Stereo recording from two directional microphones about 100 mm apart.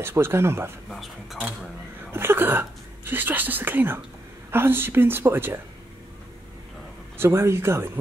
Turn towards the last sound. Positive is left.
turn(degrees=-25)  # may be behind; listen again after turning